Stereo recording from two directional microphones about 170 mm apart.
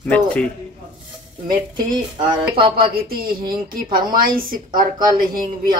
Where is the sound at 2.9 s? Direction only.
60° right (ahead or behind).